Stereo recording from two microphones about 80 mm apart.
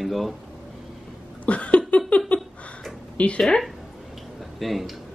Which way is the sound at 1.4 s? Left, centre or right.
Centre.